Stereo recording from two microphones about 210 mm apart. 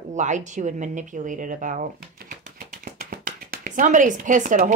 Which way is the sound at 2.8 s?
45° right (ahead or behind).